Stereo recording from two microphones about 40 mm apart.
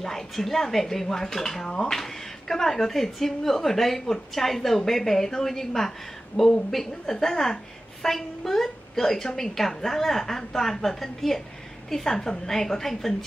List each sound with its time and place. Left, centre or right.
0.0 s speech: centre